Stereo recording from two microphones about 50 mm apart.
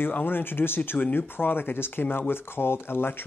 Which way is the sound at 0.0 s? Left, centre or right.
Left.